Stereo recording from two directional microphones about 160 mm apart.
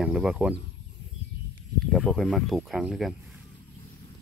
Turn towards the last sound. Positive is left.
turn(degrees=0)  # may be behind; listen again after turning